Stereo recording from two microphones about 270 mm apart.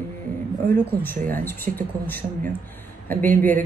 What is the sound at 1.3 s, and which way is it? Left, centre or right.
Speech, centre.